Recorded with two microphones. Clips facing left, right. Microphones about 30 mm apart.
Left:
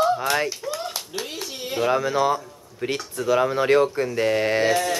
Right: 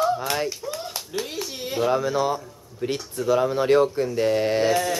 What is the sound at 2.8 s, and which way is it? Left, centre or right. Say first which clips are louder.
Speech: even; left.